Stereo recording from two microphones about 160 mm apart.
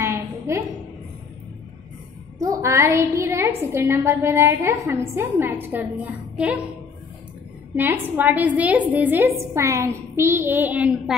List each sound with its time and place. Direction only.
0.0 s a sound: 15° right (ahead or behind)
2.4 s a woman's voice: 20° right (ahead or behind)
7.7 s a woman's voice: 10° right (ahead or behind)